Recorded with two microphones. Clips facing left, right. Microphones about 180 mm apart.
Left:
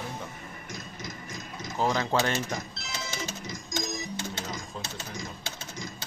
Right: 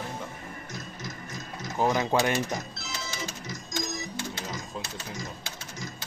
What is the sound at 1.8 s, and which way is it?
Speech, 15° right (ahead or behind).